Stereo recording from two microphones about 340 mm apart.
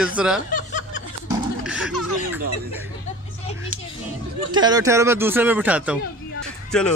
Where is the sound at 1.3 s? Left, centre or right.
Centre.